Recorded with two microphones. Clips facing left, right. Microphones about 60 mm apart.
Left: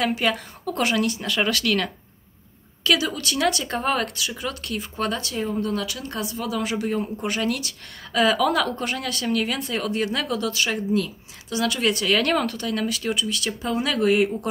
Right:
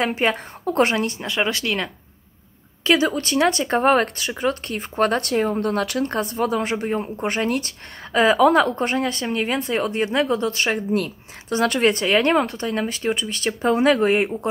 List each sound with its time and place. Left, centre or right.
0.0 s speech: right